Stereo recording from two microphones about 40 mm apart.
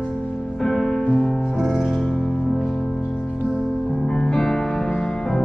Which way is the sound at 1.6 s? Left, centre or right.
Centre.